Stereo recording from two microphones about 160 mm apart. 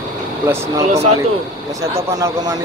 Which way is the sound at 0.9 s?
45° right (ahead or behind).